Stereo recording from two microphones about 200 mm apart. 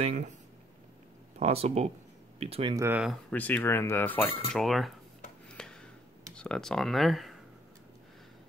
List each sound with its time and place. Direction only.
0.0 s speech: 40° right (ahead or behind)
1.4 s speech: 30° right (ahead or behind)
2.7 s speech: 10° right (ahead or behind)
3.3 s speech: 10° left (ahead or behind)
5.5 s a sound: 5° left (ahead or behind)
6.3 s speech: 5° left (ahead or behind)